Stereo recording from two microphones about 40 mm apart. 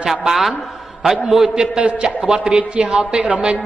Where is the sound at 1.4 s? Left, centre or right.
Right.